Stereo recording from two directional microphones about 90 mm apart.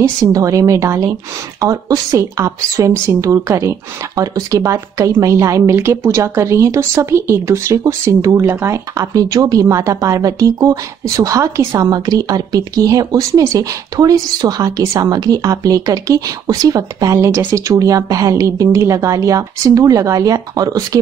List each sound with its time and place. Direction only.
0.0 s a woman's voice: 40° right (ahead or behind)